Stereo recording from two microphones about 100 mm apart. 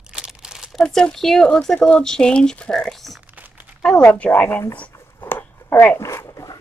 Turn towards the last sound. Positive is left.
turn(degrees=30)  # may be behind; listen again after turning